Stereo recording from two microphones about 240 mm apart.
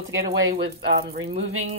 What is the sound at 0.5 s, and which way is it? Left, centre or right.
Speech, right.